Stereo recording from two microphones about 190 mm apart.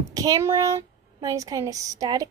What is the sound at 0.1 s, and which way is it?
Speech, 20° right (ahead or behind).